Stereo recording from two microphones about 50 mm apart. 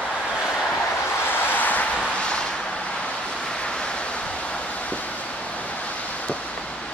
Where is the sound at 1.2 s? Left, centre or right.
Left.